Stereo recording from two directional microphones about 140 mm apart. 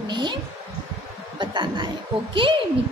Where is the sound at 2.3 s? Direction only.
35° right (ahead or behind).